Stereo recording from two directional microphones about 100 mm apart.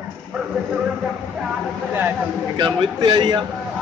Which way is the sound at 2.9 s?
45° right (ahead or behind).